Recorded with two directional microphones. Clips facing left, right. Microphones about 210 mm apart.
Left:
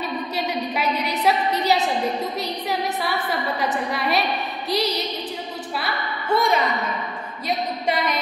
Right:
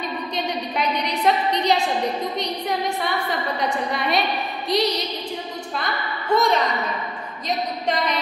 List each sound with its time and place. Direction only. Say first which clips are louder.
0.5 s a woman's voice: even; 5° left (ahead or behind)